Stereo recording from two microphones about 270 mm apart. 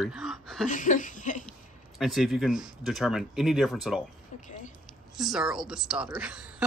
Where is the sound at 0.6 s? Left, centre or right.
Left.